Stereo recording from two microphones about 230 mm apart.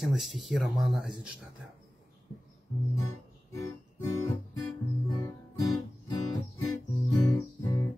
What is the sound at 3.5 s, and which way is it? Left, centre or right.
Music, centre.